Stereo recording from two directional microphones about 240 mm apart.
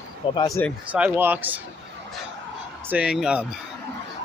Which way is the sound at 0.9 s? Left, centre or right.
Centre.